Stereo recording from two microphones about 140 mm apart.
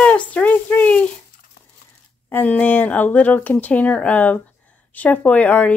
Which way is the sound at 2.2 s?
10° left (ahead or behind).